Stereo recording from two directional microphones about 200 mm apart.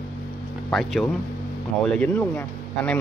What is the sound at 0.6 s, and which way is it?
Speech, 5° left (ahead or behind).